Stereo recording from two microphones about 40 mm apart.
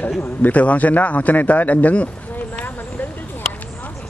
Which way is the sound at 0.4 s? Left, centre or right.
Left.